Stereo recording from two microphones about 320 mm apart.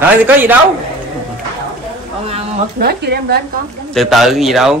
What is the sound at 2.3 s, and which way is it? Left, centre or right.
Speech, right.